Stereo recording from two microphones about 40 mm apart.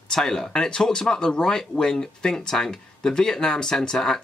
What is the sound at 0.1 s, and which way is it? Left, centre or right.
Speech, centre.